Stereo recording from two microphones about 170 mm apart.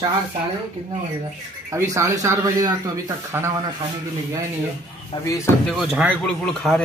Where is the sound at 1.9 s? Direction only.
20° right (ahead or behind).